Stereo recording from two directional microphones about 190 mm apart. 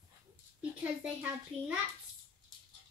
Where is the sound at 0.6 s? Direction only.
5° right (ahead or behind).